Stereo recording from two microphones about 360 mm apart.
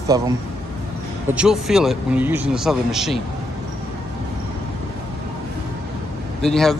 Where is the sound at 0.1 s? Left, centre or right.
Centre.